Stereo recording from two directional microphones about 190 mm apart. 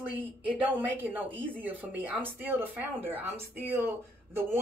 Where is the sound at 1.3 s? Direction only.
25° right (ahead or behind).